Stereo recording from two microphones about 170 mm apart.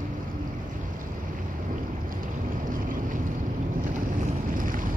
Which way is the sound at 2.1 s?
50° right (ahead or behind).